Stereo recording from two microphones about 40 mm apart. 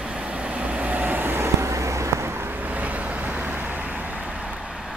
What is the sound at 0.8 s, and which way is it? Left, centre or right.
Vehicle, right.